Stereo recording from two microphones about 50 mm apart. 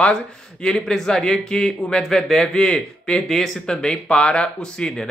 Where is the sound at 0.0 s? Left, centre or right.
Centre.